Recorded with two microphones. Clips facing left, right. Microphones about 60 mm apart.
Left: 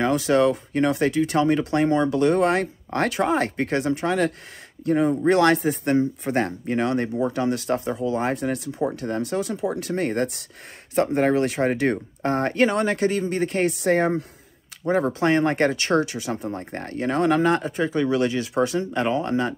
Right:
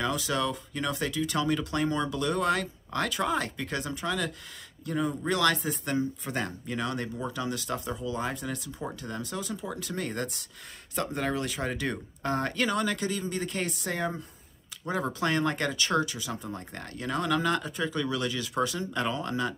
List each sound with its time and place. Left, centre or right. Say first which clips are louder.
0.0 s speech: left 10 dB; left
14.9 s speech: left 9 dB; left